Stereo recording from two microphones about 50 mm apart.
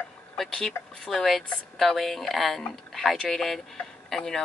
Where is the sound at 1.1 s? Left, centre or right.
Centre.